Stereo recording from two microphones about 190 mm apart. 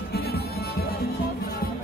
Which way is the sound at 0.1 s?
55° left (ahead or behind).